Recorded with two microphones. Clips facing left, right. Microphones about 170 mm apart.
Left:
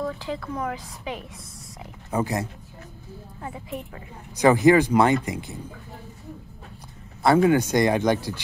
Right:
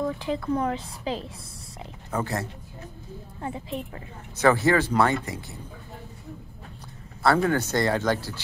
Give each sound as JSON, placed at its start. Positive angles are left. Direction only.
{"t": 0.6, "sound": "a woman's voice", "side_deg": -30}
{"t": 2.0, "sound": "speech", "side_deg": 15}
{"t": 3.4, "sound": "a woman's voice", "side_deg": -25}
{"t": 4.4, "sound": "speech", "side_deg": 15}
{"t": 7.2, "sound": "speech", "side_deg": 15}